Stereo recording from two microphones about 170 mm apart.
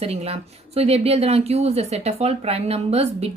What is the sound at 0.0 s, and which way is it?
Speech, 35° right (ahead or behind).